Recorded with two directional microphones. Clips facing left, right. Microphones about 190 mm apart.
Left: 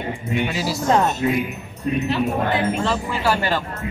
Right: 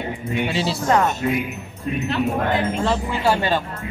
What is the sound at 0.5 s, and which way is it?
Speech, 30° right (ahead or behind).